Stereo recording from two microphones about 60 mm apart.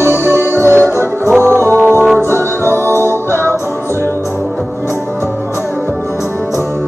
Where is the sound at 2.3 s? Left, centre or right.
Right.